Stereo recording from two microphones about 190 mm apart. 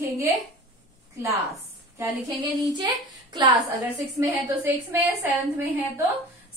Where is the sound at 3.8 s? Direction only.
10° right (ahead or behind).